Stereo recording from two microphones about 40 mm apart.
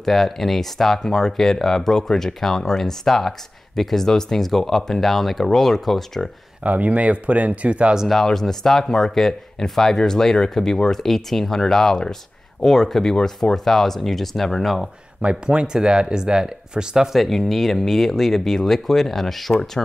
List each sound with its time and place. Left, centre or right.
0.0 s speech: centre
6.6 s speech: right
8.1 s speech: centre
15.2 s speech: right
17.1 s speech: centre